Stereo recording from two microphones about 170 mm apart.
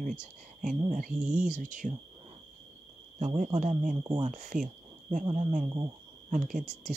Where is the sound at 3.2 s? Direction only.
45° right (ahead or behind).